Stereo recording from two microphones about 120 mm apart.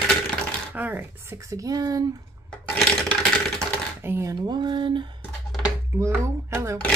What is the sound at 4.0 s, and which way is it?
Speech, 20° right (ahead or behind).